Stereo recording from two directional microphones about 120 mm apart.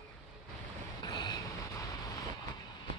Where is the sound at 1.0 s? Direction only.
35° left (ahead or behind).